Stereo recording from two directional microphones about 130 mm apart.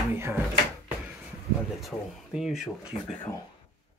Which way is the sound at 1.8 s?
5° right (ahead or behind).